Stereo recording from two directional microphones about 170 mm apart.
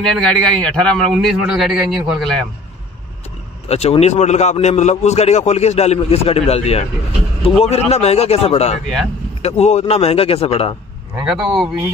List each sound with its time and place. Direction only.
0.0 s a man's voice: 5° left (ahead or behind)
3.6 s a man's voice: 40° left (ahead or behind)
11.2 s a man's voice: centre (ahead or behind)